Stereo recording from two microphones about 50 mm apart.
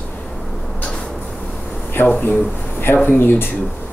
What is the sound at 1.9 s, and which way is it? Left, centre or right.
Speech, left.